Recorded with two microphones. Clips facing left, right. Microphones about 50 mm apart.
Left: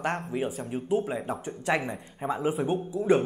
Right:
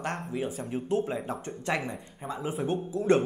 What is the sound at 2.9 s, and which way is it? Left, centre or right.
Speech, centre.